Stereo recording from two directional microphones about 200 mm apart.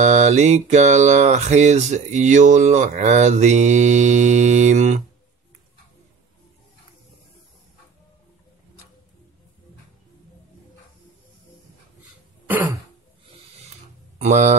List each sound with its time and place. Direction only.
0.0 s mantra: 35° right (ahead or behind)
12.0 s throat clearing: 10° right (ahead or behind)
14.1 s speech: 35° right (ahead or behind)